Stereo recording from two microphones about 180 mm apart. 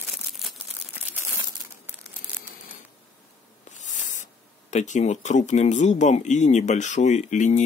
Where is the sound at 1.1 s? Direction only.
15° right (ahead or behind).